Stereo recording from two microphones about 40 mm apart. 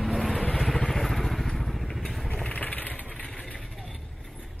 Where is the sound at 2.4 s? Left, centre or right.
Left.